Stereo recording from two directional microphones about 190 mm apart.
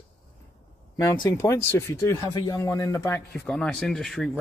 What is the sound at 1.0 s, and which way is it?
Speech, 15° left (ahead or behind).